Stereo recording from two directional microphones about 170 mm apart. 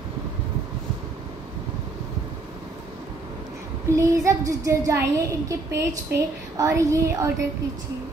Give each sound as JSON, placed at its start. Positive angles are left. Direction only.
{"t": 3.9, "sound": "speech", "side_deg": -15}